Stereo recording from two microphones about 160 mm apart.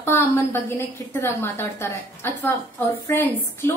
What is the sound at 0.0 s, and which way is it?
A woman's voice, 15° left (ahead or behind).